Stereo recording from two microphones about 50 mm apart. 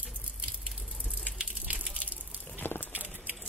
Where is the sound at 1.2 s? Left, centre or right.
Right.